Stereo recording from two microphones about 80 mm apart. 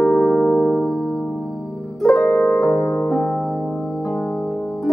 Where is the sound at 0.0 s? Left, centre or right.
Centre.